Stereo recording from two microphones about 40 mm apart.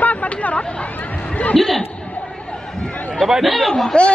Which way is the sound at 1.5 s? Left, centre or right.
Centre.